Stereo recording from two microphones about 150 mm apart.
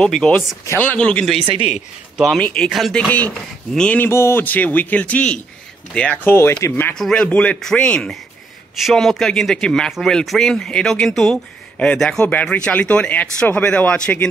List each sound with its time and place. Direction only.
0.0 s speech: 5° left (ahead or behind)
1.4 s speech: 35° right (ahead or behind)
2.1 s speech: centre (ahead or behind)